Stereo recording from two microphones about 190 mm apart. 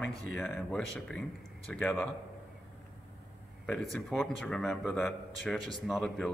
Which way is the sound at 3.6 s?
Centre (ahead or behind).